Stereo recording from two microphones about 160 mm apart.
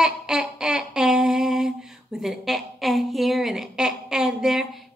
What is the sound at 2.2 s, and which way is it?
A woman's voice, centre (ahead or behind).